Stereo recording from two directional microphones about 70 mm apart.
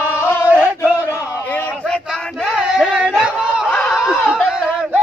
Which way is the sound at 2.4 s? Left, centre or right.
Centre.